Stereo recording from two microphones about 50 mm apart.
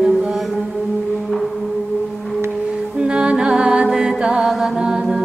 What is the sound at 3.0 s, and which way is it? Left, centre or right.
Music, centre.